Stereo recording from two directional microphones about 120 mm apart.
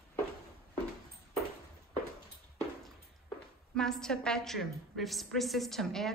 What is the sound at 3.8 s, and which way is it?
A woman's voice, 5° left (ahead or behind).